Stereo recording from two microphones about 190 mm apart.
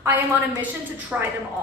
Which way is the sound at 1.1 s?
10° right (ahead or behind).